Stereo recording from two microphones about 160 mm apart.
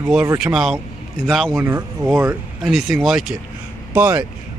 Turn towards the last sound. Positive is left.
turn(degrees=-10)  # may be behind; listen again after turning